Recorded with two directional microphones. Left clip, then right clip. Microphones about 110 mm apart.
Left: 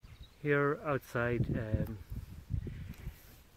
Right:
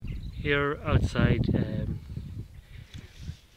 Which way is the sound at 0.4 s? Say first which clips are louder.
Right 4 dB; 20° right (ahead or behind).